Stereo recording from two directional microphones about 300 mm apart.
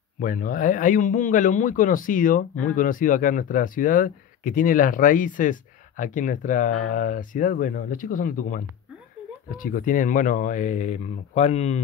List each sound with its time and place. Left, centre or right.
0.2 s speech: left